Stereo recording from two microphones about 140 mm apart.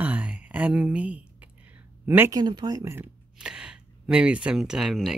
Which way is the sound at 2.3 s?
30° right (ahead or behind).